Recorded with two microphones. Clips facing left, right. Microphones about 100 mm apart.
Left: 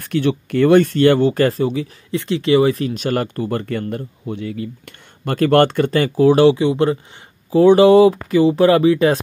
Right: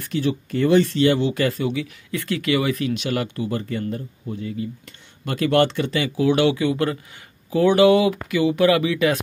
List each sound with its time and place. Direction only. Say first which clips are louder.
0.0 s speech: left 5 dB; 60° left (ahead or behind)
5.2 s speech: left 5 dB; 50° left (ahead or behind); by 9.2 s 35° left (ahead or behind)